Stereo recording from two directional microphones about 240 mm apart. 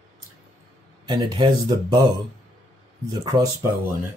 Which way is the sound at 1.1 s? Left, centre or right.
Centre.